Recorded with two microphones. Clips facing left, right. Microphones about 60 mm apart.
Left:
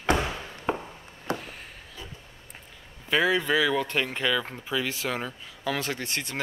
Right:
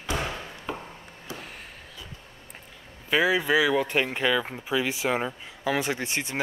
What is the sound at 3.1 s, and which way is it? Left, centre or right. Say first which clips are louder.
Speech: right 1 dB; centre.